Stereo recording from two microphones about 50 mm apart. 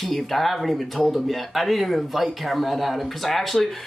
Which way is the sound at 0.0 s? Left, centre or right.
Centre.